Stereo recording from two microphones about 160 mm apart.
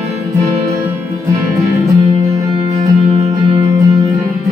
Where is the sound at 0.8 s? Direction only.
20° right (ahead or behind).